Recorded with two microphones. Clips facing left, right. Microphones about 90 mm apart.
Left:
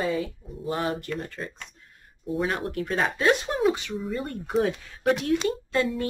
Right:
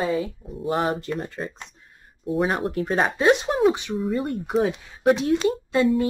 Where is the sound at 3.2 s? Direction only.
20° right (ahead or behind).